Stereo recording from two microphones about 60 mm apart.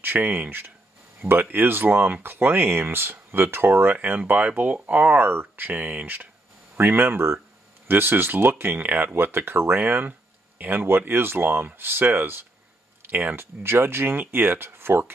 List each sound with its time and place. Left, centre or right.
0.0 s speech: right